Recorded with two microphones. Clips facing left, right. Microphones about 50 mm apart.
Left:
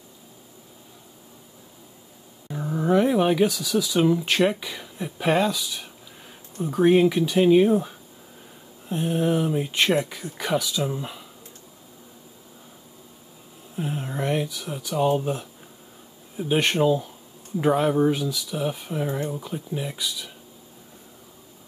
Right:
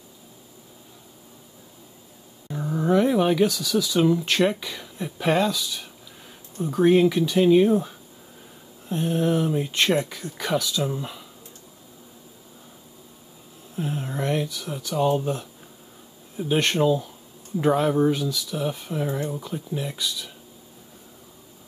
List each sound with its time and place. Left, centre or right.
2.4 s speech: centre
13.7 s speech: centre